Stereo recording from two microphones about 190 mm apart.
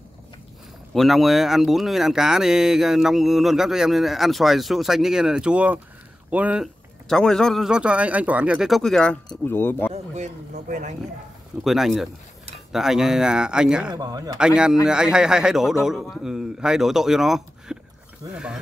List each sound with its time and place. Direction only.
0.9 s speech: centre (ahead or behind)
10.1 s speech: 40° right (ahead or behind)
11.6 s speech: centre (ahead or behind)
13.9 s speech: 20° right (ahead or behind)
14.4 s speech: 5° right (ahead or behind)